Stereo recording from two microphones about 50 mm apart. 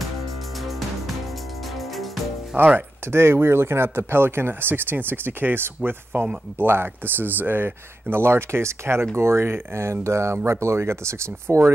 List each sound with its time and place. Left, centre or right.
0.7 s music: centre
2.5 s speech: right
3.1 s speech: right